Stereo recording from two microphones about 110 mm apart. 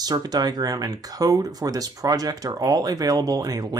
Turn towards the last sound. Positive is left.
turn(degrees=-35)  # may be behind; listen again after turning